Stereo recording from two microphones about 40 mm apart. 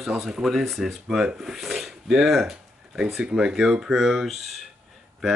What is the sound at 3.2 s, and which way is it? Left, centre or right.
Speech, right.